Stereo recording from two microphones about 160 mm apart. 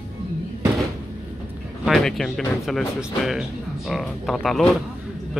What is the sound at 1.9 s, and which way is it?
Speech, 5° left (ahead or behind).